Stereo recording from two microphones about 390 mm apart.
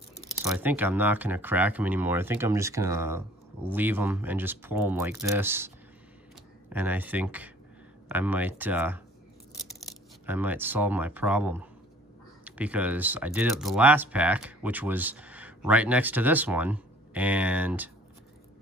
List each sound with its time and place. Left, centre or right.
0.2 s speech: centre
6.7 s speech: centre
10.2 s speech: centre